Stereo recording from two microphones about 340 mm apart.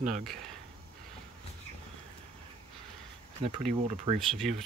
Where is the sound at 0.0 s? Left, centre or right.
Right.